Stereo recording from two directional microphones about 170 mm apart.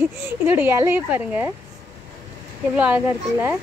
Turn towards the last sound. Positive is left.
turn(degrees=-10)  # may be behind; listen again after turning